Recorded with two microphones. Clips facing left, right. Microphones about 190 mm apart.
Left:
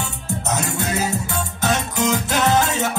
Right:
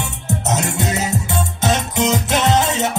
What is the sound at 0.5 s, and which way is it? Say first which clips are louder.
Music: right 3 dB; 70° right (ahead or behind).